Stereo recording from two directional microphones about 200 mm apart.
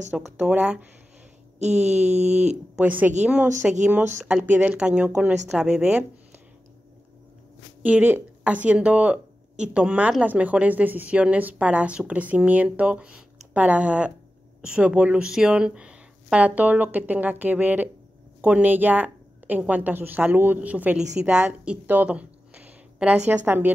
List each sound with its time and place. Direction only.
0.1 s speech: 5° right (ahead or behind)
1.6 s speech: 35° right (ahead or behind)
2.3 s a woman's voice: 5° right (ahead or behind)
7.8 s a woman's voice: 5° right (ahead or behind)